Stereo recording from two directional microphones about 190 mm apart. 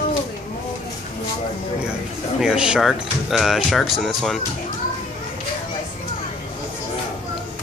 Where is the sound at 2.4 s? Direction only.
5° right (ahead or behind).